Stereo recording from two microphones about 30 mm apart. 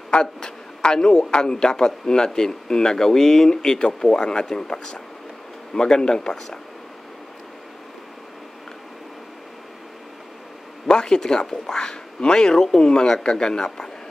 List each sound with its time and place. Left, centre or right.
0.1 s a man's voice: left
10.9 s a man's voice: left